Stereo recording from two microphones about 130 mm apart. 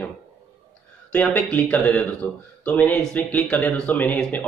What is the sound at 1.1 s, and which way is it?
Speech, 10° left (ahead or behind).